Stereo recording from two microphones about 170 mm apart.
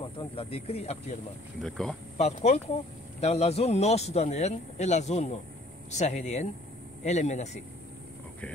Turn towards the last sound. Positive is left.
turn(degrees=40)  # may be behind; listen again after turning